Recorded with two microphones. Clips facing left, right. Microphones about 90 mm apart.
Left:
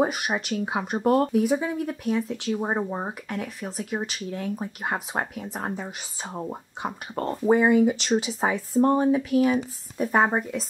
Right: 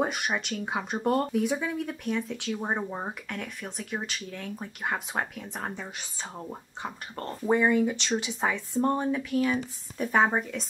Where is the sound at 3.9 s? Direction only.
25° left (ahead or behind).